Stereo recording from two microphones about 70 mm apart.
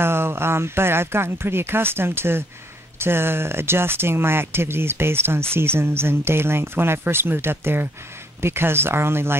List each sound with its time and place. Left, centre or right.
0.0 s speech: right